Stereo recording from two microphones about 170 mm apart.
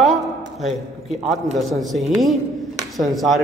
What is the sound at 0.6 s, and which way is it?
A man's voice, centre (ahead or behind).